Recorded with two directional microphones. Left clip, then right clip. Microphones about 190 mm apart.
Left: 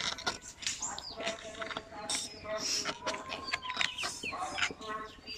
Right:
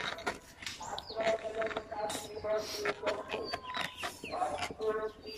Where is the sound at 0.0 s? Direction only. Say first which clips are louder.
Left 2 dB; 5° right (ahead or behind).